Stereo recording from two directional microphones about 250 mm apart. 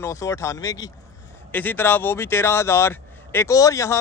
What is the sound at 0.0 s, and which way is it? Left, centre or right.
Speech, centre.